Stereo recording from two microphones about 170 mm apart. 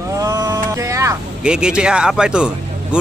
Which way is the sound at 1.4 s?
5° right (ahead or behind).